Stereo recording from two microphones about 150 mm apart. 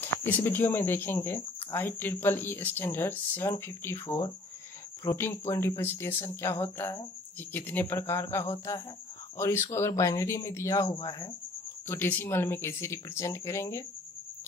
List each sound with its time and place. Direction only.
0.0 s speech: 15° left (ahead or behind)
11.9 s speech: 15° left (ahead or behind)